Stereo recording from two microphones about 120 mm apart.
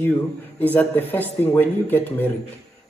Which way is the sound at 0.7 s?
15° left (ahead or behind).